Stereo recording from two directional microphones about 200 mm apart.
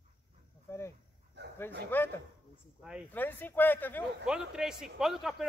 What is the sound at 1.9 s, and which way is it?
Speech, 10° left (ahead or behind).